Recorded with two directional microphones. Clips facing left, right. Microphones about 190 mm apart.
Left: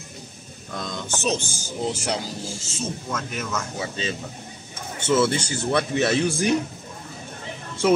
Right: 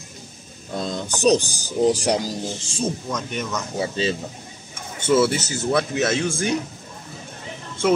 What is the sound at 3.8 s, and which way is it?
Speech, 30° right (ahead or behind).